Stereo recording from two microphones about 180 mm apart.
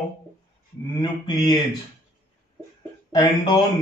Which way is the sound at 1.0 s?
25° left (ahead or behind).